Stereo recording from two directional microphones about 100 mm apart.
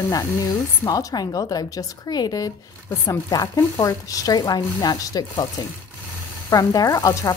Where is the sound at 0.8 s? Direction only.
40° left (ahead or behind).